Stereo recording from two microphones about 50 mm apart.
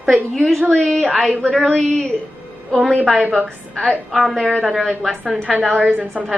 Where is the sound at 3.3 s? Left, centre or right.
Centre.